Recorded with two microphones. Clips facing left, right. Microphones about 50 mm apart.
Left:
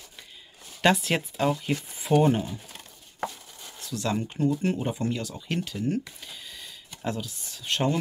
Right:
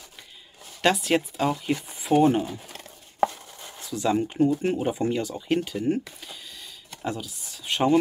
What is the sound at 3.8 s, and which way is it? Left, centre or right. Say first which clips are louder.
Speech: right 5 dB; centre.